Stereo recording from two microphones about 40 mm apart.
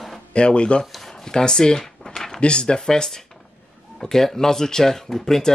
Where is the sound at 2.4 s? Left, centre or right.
Left.